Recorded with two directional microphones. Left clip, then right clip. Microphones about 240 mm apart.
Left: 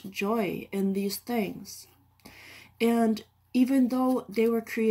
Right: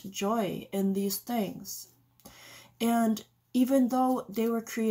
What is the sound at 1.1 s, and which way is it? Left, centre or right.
Speech, right.